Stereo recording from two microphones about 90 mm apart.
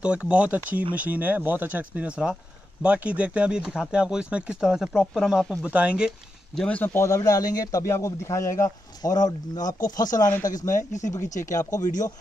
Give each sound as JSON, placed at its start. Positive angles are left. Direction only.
{"t": 0.0, "sound": "speech", "side_deg": -10}
{"t": 5.6, "sound": "speech", "side_deg": -15}
{"t": 6.5, "sound": "speech", "side_deg": 10}
{"t": 6.8, "sound": "a man's voice", "side_deg": 25}
{"t": 7.1, "sound": "speech", "side_deg": 40}